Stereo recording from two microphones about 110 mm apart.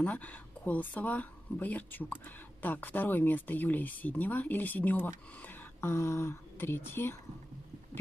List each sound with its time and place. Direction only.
0.0 s speech: 15° left (ahead or behind)